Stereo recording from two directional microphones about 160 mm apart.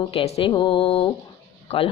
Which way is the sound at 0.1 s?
40° left (ahead or behind).